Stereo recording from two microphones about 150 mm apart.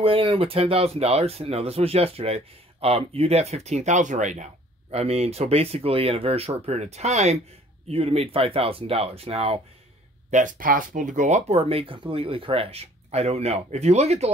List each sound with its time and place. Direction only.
0.0 s speech: 35° right (ahead or behind); by 4.5 s 55° right (ahead or behind)
4.9 s speech: 45° right (ahead or behind)
10.3 s speech: 60° right (ahead or behind); by 14.3 s 45° right (ahead or behind)